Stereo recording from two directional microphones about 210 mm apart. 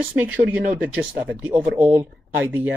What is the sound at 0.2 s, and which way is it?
Speech, 10° right (ahead or behind).